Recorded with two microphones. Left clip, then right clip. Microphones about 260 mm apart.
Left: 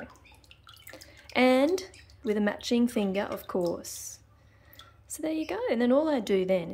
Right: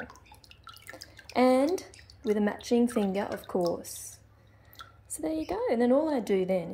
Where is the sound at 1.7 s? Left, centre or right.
Centre.